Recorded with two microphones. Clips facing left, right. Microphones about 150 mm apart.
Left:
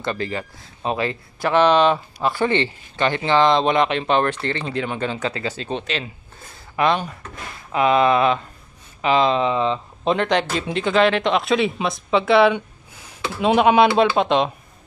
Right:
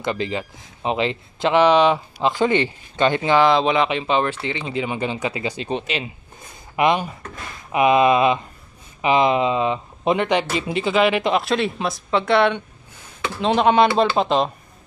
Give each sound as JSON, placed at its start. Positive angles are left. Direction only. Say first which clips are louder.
{"t": 0.0, "sound": "speech", "louder": "right 1 dB", "side_deg": -15}
{"t": 14.1, "sound": "speech", "louder": "left 1 dB", "side_deg": 0}